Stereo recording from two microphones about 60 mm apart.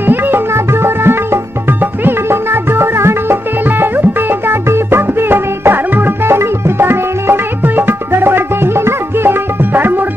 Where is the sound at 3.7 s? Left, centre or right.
Right.